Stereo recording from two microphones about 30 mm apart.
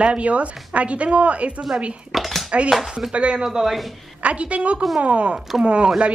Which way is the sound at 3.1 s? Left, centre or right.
Right.